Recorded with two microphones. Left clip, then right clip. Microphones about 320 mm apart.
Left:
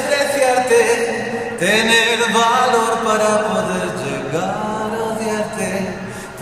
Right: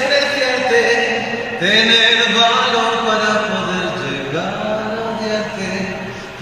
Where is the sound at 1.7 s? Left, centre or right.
Left.